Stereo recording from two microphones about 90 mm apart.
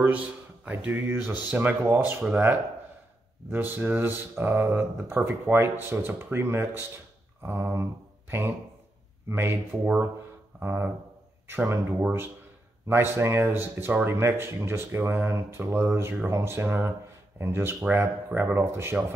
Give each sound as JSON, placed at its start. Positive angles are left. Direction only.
{"t": 0.0, "sound": "a man's voice", "side_deg": -15}
{"t": 3.5, "sound": "speech", "side_deg": -20}
{"t": 7.4, "sound": "mantra", "side_deg": -25}
{"t": 9.3, "sound": "speech", "side_deg": -25}
{"t": 9.7, "sound": "speech", "side_deg": -15}
{"t": 10.6, "sound": "speech", "side_deg": -25}